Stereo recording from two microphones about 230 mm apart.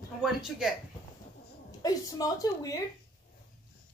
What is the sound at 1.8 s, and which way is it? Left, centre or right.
Speech, centre.